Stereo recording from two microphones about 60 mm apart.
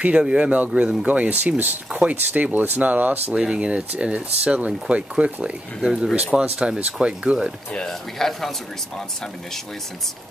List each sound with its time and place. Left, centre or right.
0.0 s speech: centre
3.3 s speech: centre
5.4 s speech: centre
6.1 s speech: centre
7.7 s speech: centre